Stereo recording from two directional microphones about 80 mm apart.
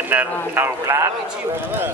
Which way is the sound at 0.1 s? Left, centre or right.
Right.